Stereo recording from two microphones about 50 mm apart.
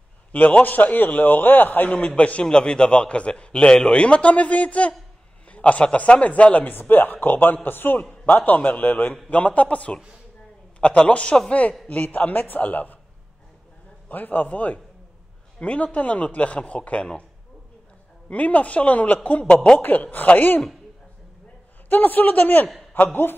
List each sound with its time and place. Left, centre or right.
0.3 s a man's voice: left
1.9 s a man's voice: left
2.4 s a man's voice: centre
6.7 s a man's voice: left
8.0 s a man's voice: left
11.9 s a man's voice: left
14.0 s a man's voice: left
18.3 s a man's voice: left
19.5 s a man's voice: centre
19.8 s a man's voice: left
21.8 s a man's voice: left